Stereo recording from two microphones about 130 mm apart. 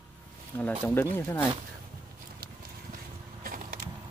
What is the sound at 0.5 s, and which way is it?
Speech, 15° left (ahead or behind).